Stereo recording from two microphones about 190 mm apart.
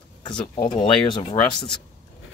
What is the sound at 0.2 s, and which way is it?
Speech, 25° left (ahead or behind).